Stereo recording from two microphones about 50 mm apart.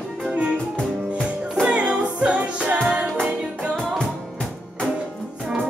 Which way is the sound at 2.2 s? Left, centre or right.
Right.